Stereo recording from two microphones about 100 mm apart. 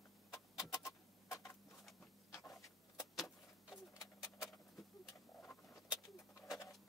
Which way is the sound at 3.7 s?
35° left (ahead or behind).